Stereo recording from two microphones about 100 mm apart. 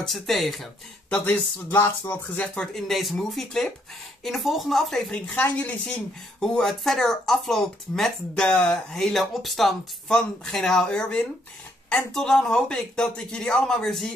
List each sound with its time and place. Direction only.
0.0 s speech: centre (ahead or behind)
1.1 s a man's voice: 15° left (ahead or behind)
6.4 s a man's voice: 5° left (ahead or behind)